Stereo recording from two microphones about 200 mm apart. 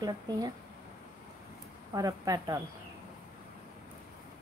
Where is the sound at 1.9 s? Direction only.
15° right (ahead or behind).